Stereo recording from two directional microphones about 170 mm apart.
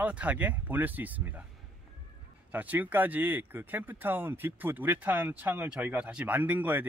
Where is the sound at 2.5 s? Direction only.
10° right (ahead or behind).